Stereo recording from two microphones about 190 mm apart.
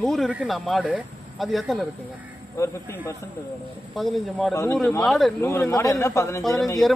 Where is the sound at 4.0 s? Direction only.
Centre (ahead or behind).